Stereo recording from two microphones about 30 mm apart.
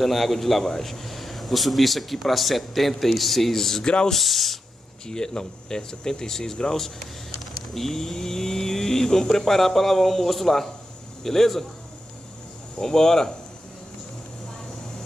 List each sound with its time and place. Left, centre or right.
0.0 s speech: centre
3.8 s speech: left
4.1 s speech: centre
5.0 s speech: left
9.5 s speech: centre
12.7 s speech: centre